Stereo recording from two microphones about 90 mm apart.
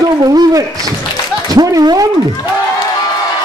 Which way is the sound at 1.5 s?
45° right (ahead or behind).